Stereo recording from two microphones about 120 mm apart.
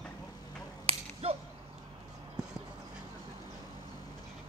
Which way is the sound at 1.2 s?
55° right (ahead or behind).